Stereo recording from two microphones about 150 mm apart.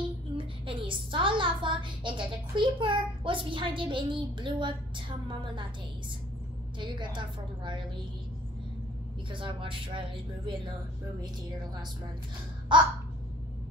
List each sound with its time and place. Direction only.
0.4 s a woman's voice: 35° right (ahead or behind)
6.8 s speech: 30° right (ahead or behind)
9.3 s speech: 35° right (ahead or behind)
12.7 s speech: 30° right (ahead or behind)